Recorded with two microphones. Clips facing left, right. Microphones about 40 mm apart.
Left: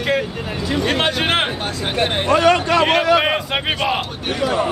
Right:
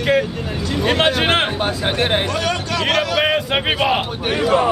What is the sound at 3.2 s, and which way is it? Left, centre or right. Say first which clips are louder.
Speech: right 2 dB; centre.